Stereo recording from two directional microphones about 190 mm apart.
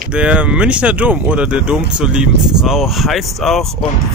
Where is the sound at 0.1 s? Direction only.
5° right (ahead or behind).